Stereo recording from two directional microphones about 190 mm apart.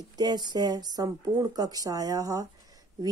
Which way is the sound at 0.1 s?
20° right (ahead or behind).